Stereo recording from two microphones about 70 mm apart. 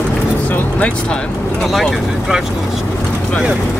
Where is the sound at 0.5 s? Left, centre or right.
Centre.